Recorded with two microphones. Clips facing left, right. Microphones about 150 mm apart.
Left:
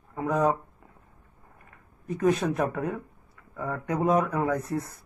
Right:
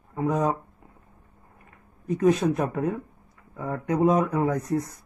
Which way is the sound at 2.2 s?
20° right (ahead or behind).